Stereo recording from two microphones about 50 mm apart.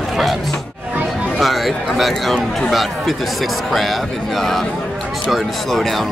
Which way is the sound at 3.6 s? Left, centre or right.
Centre.